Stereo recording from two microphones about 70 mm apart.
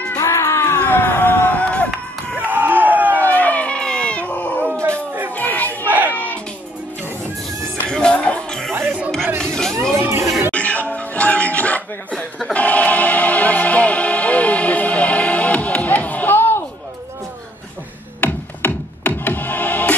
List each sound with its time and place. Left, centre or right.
0.2 s a sound: left
0.7 s music: left
2.4 s crowd: right
3.2 s dog: left
4.9 s a sound: right
5.3 s a sound: left
5.9 s a sound: right
6.1 s music: left
7.4 s music: centre
9.9 s music: right
10.5 s music: centre
18.2 s music: left